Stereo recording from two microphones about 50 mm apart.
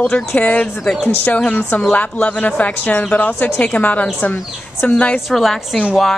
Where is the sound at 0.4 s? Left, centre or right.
Left.